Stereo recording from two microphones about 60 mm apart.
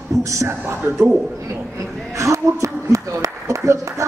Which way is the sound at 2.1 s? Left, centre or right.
Right.